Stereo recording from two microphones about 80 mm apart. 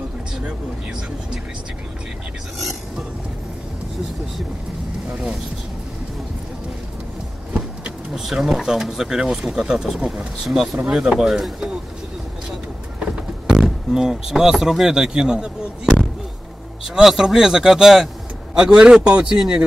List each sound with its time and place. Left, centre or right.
2.6 s vehicle: centre
7.5 s speech: centre
13.0 s a sound: centre
13.7 s speech: centre